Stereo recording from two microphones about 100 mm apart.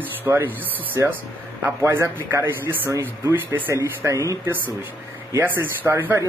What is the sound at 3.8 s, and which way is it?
Speech, 30° right (ahead or behind).